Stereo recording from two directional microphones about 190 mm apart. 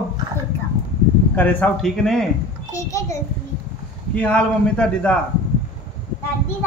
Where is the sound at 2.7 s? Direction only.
15° left (ahead or behind).